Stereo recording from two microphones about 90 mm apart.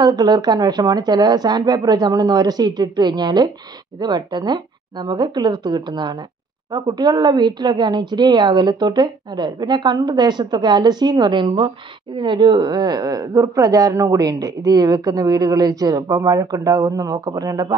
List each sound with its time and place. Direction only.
0.0 s a woman's voice: 50° right (ahead or behind)